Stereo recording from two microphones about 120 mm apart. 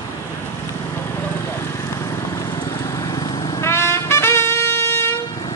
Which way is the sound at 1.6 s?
25° left (ahead or behind).